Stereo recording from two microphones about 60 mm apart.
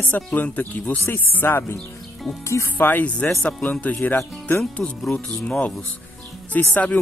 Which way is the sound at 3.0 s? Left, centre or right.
Left.